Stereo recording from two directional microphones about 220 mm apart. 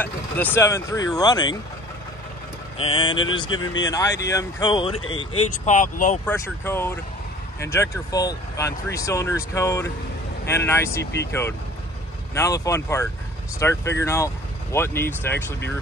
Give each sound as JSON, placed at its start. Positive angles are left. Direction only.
{"t": 0.0, "sound": "speech", "side_deg": 10}
{"t": 2.8, "sound": "speech", "side_deg": 25}
{"t": 5.5, "sound": "speech", "side_deg": 35}
{"t": 6.2, "sound": "speech", "side_deg": 10}
{"t": 12.4, "sound": "speech", "side_deg": 15}